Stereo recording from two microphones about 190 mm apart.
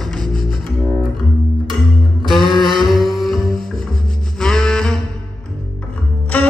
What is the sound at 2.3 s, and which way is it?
Music, centre (ahead or behind).